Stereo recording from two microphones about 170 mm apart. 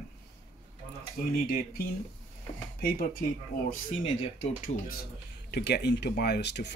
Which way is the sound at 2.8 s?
60° left (ahead or behind).